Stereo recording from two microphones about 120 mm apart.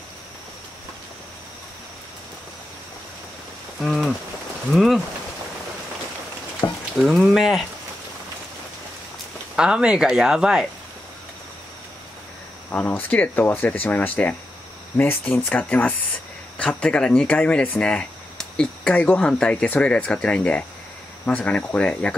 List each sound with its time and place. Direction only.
3.8 s speech: centre (ahead or behind)
6.6 s a sound: 30° left (ahead or behind)
7.0 s speech: 5° right (ahead or behind)
9.6 s speech: 5° right (ahead or behind)
12.7 s speech: 15° left (ahead or behind)